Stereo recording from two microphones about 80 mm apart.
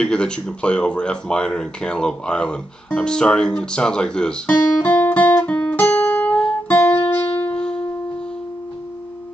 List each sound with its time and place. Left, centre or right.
0.0 s speech: centre
4.5 s guitar: left
6.3 s guitar: centre
6.8 s music: left